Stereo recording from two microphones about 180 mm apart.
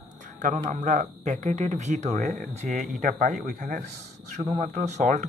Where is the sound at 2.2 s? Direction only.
60° right (ahead or behind).